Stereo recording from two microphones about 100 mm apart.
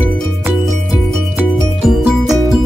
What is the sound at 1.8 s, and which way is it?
Music, 5° right (ahead or behind).